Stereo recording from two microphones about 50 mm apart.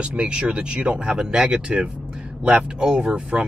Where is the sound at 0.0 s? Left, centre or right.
Right.